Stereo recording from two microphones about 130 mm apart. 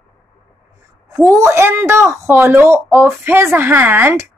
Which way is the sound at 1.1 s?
25° right (ahead or behind).